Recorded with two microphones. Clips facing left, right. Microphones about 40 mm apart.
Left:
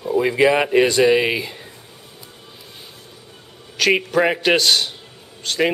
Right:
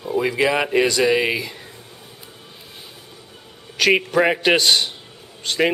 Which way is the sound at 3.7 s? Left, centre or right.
Centre.